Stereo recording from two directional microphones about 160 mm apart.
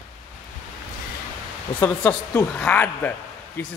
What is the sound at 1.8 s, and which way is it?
Speech, 10° left (ahead or behind).